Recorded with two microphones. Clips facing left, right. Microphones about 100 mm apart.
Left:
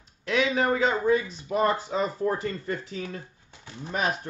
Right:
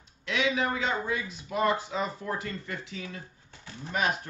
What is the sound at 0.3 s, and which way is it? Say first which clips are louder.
A man's voice: left 4 dB; 40° left (ahead or behind).